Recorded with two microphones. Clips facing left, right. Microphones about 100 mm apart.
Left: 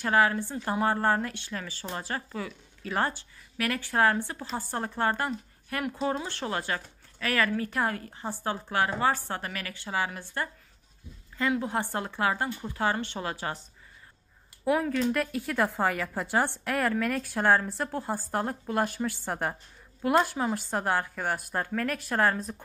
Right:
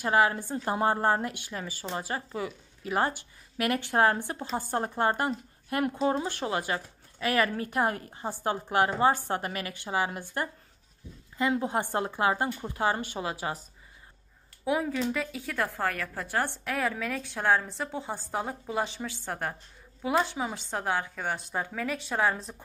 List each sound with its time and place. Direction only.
0.0 s speech: 20° right (ahead or behind)
6.1 s speech: 15° right (ahead or behind)
11.5 s a woman's voice: 20° right (ahead or behind)
15.1 s a woman's voice: 5° left (ahead or behind)
16.7 s a woman's voice: centre (ahead or behind)
20.0 s a woman's voice: 5° right (ahead or behind)